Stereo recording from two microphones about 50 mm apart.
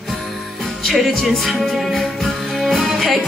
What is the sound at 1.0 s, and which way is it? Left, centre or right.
Music, centre.